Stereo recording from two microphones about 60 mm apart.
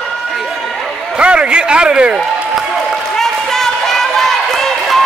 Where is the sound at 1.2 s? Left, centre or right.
Centre.